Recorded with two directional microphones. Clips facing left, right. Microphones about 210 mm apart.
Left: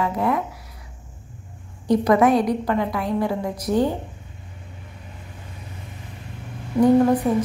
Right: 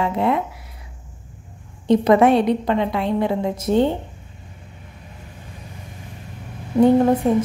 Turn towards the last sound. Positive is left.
turn(degrees=-25)  # may be behind; listen again after turning